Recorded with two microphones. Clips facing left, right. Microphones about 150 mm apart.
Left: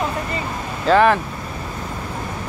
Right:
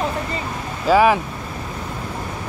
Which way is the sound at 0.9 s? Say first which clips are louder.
Even; 5° right (ahead or behind).